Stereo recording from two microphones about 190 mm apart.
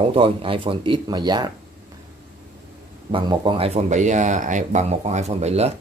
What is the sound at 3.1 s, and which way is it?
Speech, 25° right (ahead or behind).